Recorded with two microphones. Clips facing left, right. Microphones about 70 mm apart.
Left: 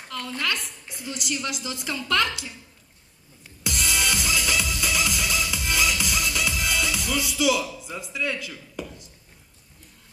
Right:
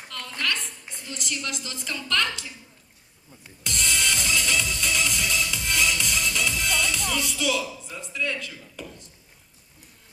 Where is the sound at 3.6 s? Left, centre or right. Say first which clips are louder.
Left 1 dB; centre.